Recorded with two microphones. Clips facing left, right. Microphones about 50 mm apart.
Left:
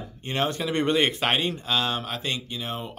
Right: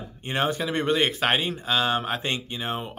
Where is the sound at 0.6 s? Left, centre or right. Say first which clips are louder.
Left 3 dB; centre; by 2.9 s right.